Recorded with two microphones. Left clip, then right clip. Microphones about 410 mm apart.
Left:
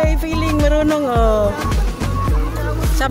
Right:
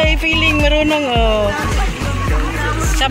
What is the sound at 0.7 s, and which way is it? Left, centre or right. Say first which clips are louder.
Music: right 2 dB; left.